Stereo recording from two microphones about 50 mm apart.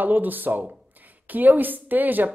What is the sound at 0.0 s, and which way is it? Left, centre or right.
Speech, right.